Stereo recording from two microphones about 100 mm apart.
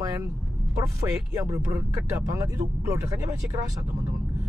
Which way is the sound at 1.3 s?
35° right (ahead or behind).